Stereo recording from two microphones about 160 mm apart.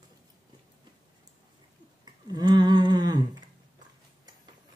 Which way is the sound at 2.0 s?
25° right (ahead or behind).